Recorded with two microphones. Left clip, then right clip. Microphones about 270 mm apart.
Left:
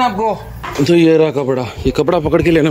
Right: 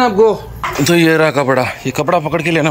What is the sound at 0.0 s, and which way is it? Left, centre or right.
Speech, centre.